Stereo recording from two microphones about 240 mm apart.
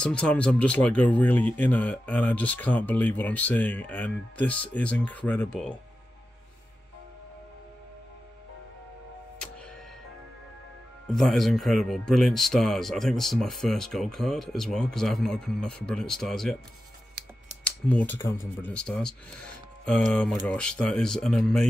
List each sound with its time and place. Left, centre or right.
0.0 s speech: centre
11.1 s speech: centre
17.6 s speech: centre